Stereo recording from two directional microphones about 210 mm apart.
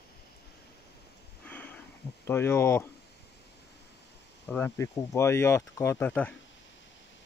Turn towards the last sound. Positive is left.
turn(degrees=10)  # may be behind; listen again after turning